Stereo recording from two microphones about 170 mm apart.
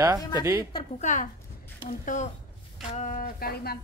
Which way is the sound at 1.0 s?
50° left (ahead or behind).